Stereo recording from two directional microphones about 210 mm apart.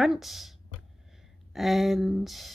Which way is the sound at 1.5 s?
Centre (ahead or behind).